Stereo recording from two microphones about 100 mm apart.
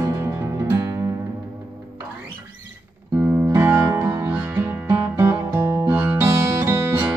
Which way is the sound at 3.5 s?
25° right (ahead or behind).